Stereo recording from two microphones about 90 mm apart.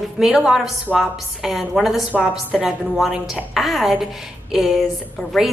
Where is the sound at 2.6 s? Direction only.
5° right (ahead or behind).